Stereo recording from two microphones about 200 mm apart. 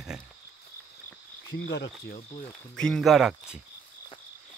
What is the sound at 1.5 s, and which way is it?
Speech, 55° left (ahead or behind).